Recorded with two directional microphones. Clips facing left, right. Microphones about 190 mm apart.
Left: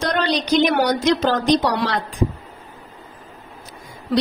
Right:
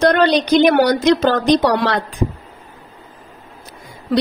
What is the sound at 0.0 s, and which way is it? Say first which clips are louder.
A woman's voice: right 7 dB; 55° right (ahead or behind).